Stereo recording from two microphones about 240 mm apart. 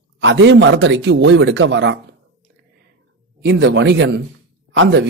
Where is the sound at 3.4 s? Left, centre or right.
Right.